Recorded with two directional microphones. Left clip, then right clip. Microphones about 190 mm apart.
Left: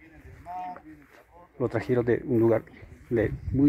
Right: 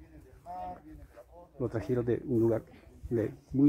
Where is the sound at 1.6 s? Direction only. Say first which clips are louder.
Left 6 dB; 25° left (ahead or behind).